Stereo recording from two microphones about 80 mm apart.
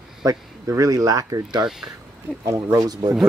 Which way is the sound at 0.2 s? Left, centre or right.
Right.